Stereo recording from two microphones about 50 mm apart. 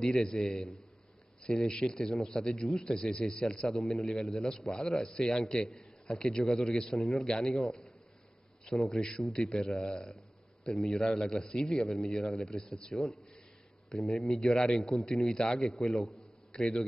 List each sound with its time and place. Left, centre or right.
0.1 s a man's voice: centre
3.8 s speech: centre
4.2 s a man's voice: centre
7.0 s speech: centre
7.2 s a man's voice: centre
8.9 s a man's voice: centre
11.0 s a man's voice: centre
12.9 s speech: centre
14.4 s a man's voice: centre
15.7 s speech: centre
16.5 s a man's voice: centre